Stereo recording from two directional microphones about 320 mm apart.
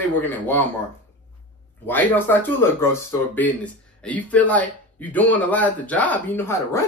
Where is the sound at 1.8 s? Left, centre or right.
Centre.